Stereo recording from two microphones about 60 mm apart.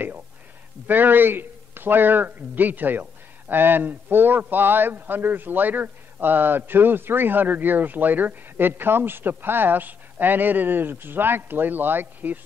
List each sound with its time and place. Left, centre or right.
0.8 s speech: right